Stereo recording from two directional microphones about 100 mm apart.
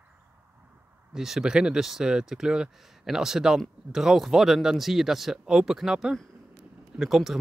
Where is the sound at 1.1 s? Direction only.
5° right (ahead or behind).